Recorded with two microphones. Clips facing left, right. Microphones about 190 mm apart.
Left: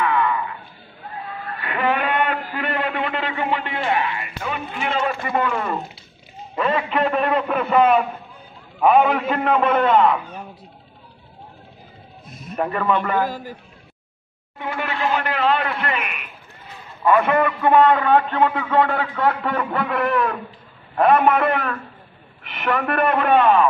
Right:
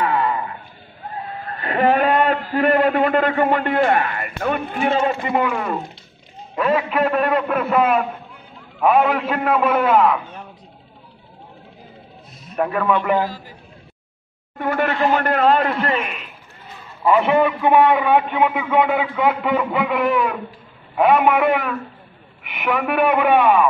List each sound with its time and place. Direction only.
0.0 s a sound: 35° right (ahead or behind); by 4.9 s 50° right (ahead or behind)
4.9 s a man's voice: 25° right (ahead or behind)
5.5 s a man's voice: centre (ahead or behind)
12.5 s a man's voice: centre (ahead or behind)
14.6 s a man's voice: 50° right (ahead or behind)
17.0 s a man's voice: 15° right (ahead or behind)